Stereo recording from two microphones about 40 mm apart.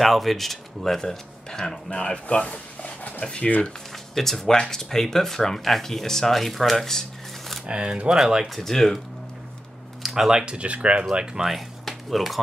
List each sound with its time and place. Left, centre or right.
0.0 s speech: centre
2.0 s speech: left
3.2 s speech: left
4.1 s speech: centre
7.6 s speech: right
8.5 s speech: centre
10.0 s speech: centre
10.4 s speech: right
11.1 s speech: centre
11.4 s a sound: centre